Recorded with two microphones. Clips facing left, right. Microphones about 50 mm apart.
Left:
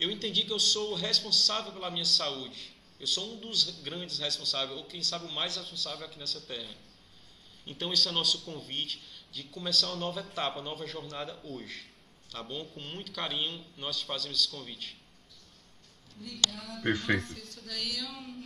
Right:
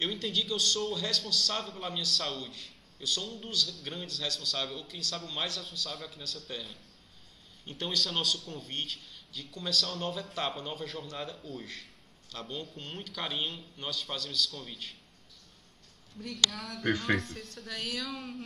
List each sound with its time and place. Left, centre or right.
0.0 s a man's voice: centre
16.3 s speech: right
16.8 s a man's voice: centre
17.6 s speech: right